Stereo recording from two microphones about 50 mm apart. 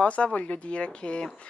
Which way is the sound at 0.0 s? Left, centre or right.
Left.